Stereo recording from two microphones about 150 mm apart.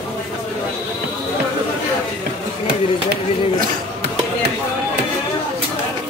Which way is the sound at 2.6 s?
90° right.